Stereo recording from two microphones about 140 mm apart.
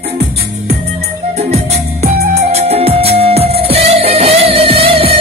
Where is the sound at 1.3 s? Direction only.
50° right (ahead or behind).